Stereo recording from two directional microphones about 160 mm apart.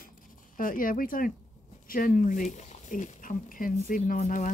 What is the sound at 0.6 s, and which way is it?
Speech, 60° left (ahead or behind).